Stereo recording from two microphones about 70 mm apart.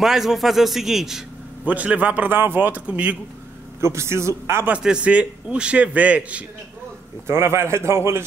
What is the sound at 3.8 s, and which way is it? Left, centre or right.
Speech, right.